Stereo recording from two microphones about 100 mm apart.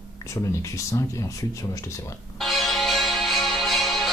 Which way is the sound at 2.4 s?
Centre (ahead or behind).